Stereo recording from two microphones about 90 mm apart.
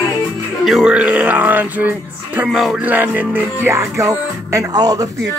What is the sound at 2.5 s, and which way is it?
Music, centre (ahead or behind).